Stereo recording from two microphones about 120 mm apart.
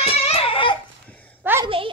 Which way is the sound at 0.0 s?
55° left (ahead or behind).